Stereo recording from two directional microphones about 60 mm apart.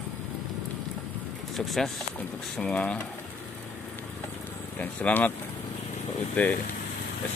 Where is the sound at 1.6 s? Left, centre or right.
Centre.